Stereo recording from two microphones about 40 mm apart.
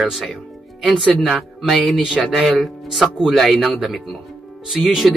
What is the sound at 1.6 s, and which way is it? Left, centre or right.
Speech, centre.